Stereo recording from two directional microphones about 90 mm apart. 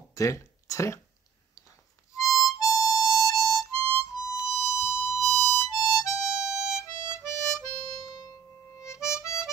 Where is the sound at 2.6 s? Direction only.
45° left (ahead or behind).